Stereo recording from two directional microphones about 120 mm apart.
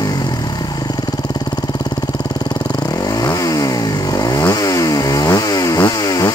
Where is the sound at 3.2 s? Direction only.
30° left (ahead or behind).